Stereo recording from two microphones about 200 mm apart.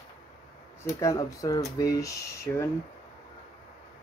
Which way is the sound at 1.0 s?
15° left (ahead or behind).